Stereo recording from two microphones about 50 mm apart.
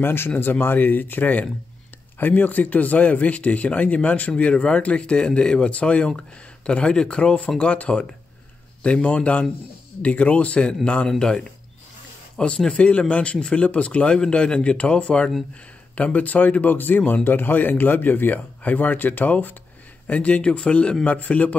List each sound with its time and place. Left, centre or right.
0.0 s speech: left; by 20.9 s centre
21.0 s speech: left